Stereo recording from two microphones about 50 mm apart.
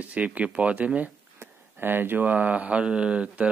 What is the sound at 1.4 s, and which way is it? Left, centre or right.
Speech, right.